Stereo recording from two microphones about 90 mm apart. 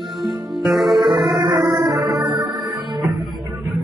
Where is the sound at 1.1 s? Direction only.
55° right (ahead or behind).